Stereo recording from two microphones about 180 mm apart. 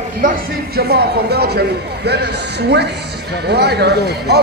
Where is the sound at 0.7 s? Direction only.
60° right (ahead or behind).